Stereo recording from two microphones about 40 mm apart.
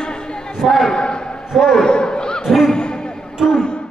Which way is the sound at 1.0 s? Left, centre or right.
Left.